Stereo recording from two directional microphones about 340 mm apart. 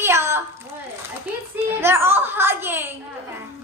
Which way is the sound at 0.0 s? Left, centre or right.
Centre.